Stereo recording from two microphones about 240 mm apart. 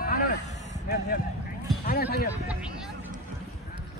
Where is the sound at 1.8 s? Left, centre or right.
Left.